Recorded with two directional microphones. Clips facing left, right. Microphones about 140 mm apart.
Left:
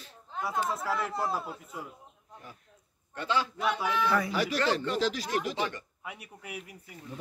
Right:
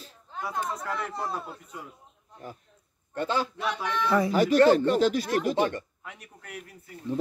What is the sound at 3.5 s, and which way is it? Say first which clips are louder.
Speech: left 1 dB; 5° left (ahead or behind).